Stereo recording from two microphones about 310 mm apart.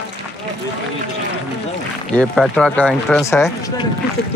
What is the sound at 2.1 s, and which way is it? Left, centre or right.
Speech, centre.